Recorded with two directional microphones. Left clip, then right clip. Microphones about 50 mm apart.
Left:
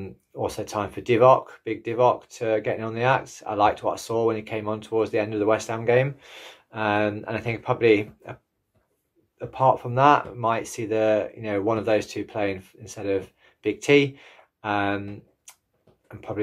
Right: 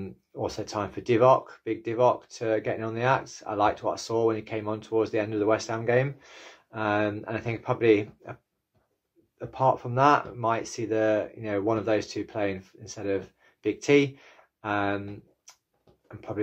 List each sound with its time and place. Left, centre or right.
0.0 s speech: left
5.9 s speech: left
7.2 s speech: centre
9.4 s speech: left
14.9 s speech: centre
16.1 s speech: left